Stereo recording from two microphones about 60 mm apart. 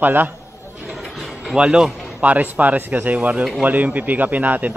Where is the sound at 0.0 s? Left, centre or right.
Right.